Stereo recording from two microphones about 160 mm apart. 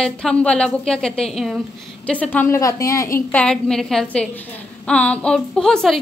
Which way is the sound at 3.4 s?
5° left (ahead or behind).